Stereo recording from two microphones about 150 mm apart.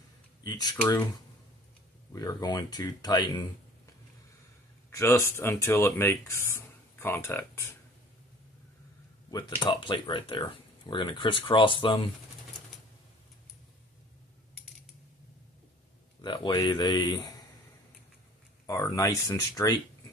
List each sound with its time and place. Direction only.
0.4 s speech: 25° left (ahead or behind)
4.9 s speech: 15° left (ahead or behind)
9.3 s speech: 30° left (ahead or behind)
16.2 s a sound: 30° left (ahead or behind)
16.5 s speech: 30° left (ahead or behind)
18.7 s speech: 20° left (ahead or behind)